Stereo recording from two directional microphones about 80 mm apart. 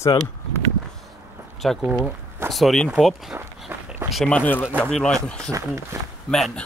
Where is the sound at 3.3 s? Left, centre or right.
Right.